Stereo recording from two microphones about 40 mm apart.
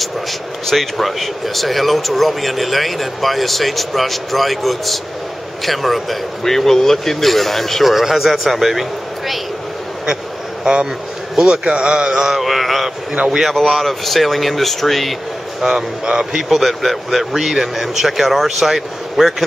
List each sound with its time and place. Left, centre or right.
0.7 s speech: centre
7.9 s speech: centre
10.6 s a man's voice: right
12.1 s speech: centre
12.4 s speech: centre
15.6 s speech: centre
16.4 s speech: centre